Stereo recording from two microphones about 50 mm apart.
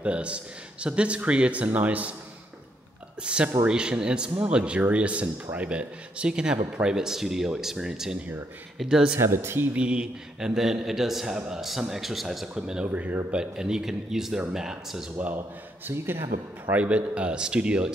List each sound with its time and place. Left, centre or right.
0.0 s speech: right
3.3 s speech: right
5.2 s a man's voice: right
5.7 s speech: right
9.2 s speech: right
9.8 s speech: centre
11.3 s speech: centre
11.8 s speech: centre
12.5 s speech: centre
12.8 s a man's voice: right
13.3 s speech: centre
16.7 s speech: right